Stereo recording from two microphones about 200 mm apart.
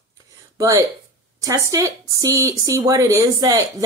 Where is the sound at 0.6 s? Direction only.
15° right (ahead or behind).